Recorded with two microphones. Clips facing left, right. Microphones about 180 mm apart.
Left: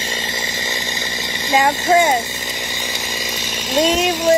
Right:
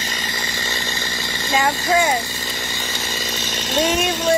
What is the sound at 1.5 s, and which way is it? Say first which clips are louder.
Speech: left 4 dB; 20° left (ahead or behind).